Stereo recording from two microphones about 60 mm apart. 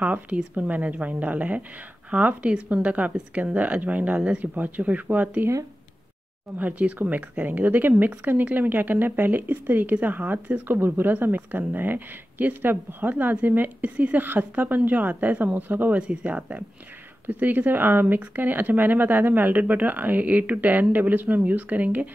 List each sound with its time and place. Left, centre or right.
0.0 s speech: right
6.6 s speech: right
16.0 s speech: centre